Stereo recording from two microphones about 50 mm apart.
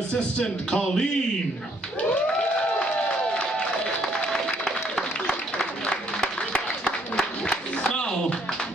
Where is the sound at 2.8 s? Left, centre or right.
Left.